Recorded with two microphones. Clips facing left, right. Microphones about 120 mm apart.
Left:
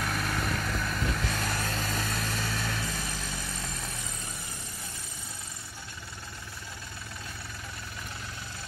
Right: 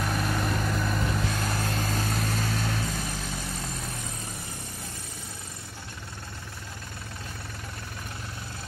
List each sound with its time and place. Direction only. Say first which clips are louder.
0.0 s vehicle: right 3 dB; 20° right (ahead or behind)
2.1 s vehicle: right 4 dB; centre (ahead or behind)